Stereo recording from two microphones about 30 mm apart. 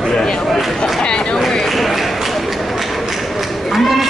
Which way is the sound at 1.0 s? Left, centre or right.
Left.